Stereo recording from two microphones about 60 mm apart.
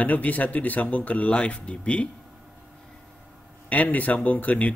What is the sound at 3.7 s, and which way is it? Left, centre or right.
Speech, left.